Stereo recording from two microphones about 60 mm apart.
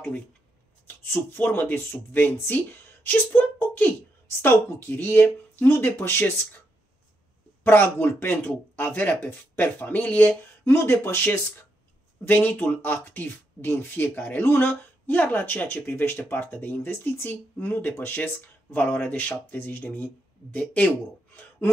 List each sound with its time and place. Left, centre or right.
0.8 s speech: left
7.6 s speech: left
10.6 s speech: left
12.3 s speech: left